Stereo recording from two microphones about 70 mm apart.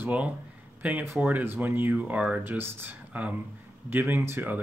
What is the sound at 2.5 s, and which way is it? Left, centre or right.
Speech, right.